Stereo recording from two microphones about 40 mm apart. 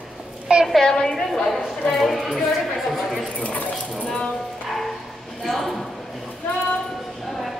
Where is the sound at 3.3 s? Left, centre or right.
Left.